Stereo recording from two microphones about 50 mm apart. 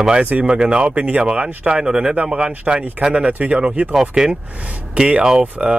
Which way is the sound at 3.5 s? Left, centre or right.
Centre.